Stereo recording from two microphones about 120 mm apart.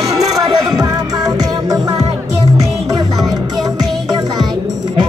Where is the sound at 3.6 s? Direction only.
30° right (ahead or behind).